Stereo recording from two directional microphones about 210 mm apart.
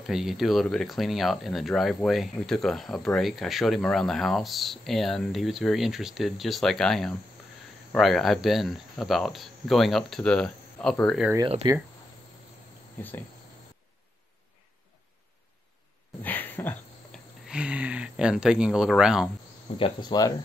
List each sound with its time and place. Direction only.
0.0 s speech: centre (ahead or behind)
11.3 s speech: 20° right (ahead or behind)
16.2 s a sound: 10° left (ahead or behind)
17.5 s speech: 5° right (ahead or behind)
19.8 s speech: 20° left (ahead or behind)